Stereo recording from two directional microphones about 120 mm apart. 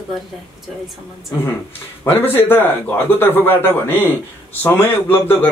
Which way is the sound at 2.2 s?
20° left (ahead or behind).